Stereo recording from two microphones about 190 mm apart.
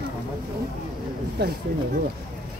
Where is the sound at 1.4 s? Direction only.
60° right (ahead or behind).